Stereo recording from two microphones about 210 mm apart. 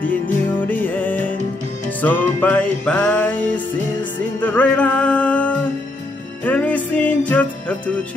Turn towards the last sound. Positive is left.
turn(degrees=10)  # may be behind; listen again after turning